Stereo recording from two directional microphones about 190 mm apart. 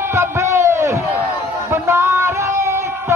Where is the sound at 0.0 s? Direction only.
15° right (ahead or behind).